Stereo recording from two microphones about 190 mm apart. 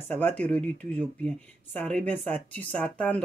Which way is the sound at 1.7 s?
5° left (ahead or behind).